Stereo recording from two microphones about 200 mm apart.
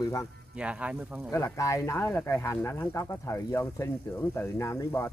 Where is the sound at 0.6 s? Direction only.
5° right (ahead or behind).